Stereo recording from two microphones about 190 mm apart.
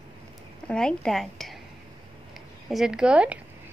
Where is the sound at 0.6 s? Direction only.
5° left (ahead or behind).